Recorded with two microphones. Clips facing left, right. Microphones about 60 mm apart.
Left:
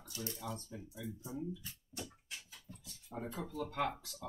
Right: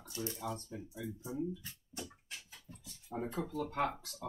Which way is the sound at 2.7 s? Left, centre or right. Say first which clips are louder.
Even; centre.